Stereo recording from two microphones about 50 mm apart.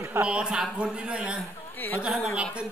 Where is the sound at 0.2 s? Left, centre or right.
Centre.